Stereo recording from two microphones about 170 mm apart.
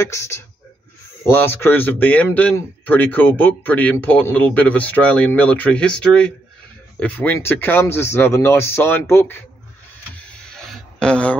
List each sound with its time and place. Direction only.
0.0 s speech: 15° left (ahead or behind)
11.0 s speech: 5° left (ahead or behind)